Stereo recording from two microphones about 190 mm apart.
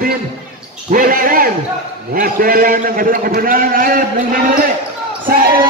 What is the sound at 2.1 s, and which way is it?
A man's voice, 50° right (ahead or behind).